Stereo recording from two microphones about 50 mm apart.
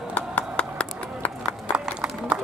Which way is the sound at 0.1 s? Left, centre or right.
Left.